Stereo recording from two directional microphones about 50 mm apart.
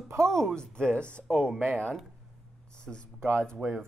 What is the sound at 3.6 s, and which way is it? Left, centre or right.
Speech, right.